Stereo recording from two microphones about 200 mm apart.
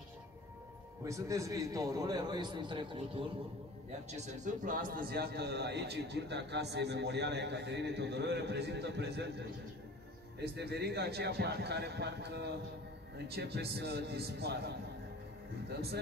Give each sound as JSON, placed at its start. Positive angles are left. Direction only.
{"t": 1.0, "sound": "a man's voice", "side_deg": -15}
{"t": 4.1, "sound": "a man's voice", "side_deg": -35}